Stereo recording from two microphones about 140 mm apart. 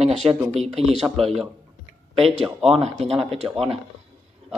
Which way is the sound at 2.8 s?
50° right (ahead or behind).